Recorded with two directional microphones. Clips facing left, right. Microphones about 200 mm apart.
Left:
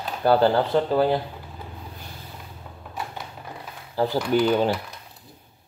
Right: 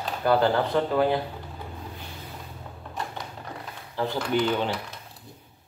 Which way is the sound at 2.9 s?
5° left (ahead or behind).